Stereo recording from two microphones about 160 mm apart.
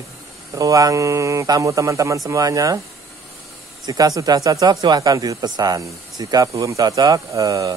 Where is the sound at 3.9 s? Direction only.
25° right (ahead or behind).